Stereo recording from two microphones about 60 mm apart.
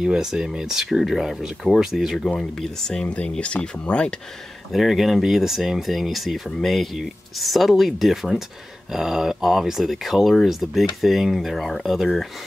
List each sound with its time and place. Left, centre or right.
0.0 s speech: centre
2.1 s speech: centre
3.1 s speech: centre
4.7 s speech: centre